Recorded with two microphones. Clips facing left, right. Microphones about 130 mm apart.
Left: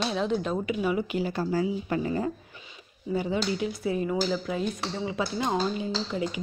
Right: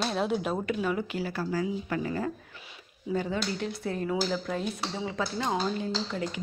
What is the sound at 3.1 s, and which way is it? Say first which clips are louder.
A woman's voice: left 2 dB; 10° left (ahead or behind).